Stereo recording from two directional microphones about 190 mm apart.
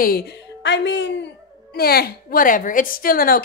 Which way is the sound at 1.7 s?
55° left (ahead or behind).